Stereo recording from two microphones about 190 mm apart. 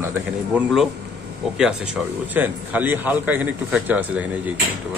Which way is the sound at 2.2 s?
10° right (ahead or behind).